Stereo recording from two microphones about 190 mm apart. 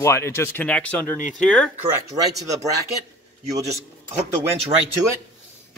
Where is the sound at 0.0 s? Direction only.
15° left (ahead or behind).